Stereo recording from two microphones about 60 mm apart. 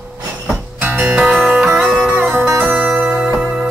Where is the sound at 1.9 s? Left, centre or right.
Centre.